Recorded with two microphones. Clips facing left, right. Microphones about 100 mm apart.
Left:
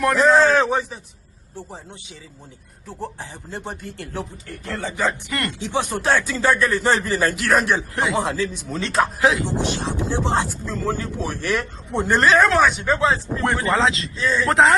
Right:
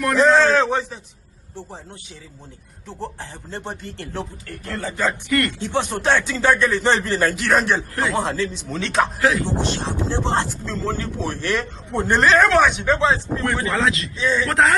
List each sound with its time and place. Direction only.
0.0 s a man's voice: centre (ahead or behind)
2.9 s a man's voice: 10° left (ahead or behind)
4.6 s a man's voice: 20° left (ahead or behind)
5.7 s a man's voice: 10° left (ahead or behind)
7.9 s a man's voice: 20° left (ahead or behind); by 9.1 s centre (ahead or behind)
9.2 s speech: 20° left (ahead or behind)
12.1 s a man's voice: centre (ahead or behind)
13.7 s a man's voice: 25° left (ahead or behind)